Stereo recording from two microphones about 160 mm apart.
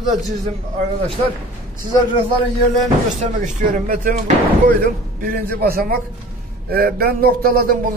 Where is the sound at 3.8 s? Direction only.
55° right (ahead or behind).